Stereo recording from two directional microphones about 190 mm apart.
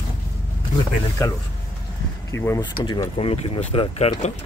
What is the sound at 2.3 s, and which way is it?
Speech, 15° left (ahead or behind).